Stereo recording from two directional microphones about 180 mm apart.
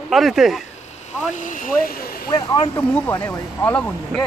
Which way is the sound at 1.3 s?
45° left (ahead or behind).